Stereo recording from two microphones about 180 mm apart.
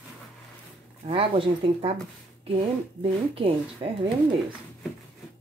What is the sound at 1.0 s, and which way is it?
Speech, 30° right (ahead or behind).